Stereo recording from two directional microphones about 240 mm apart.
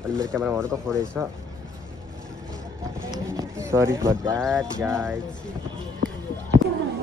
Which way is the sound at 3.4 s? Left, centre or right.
Centre.